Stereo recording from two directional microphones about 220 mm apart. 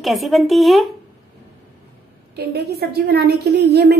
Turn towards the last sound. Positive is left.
turn(degrees=-50)  # may be behind; listen again after turning